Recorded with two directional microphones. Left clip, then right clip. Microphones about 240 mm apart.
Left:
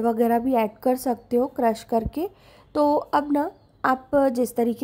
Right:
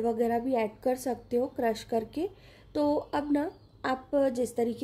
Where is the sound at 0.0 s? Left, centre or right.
Left.